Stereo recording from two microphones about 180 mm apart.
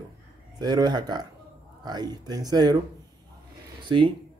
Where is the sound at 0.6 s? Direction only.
20° right (ahead or behind).